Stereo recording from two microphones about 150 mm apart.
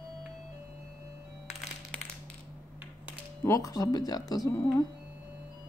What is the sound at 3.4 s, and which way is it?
Speech, 20° left (ahead or behind).